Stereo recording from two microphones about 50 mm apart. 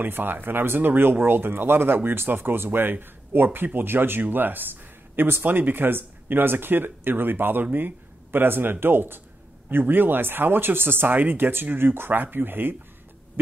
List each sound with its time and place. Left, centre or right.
0.0 s speech: right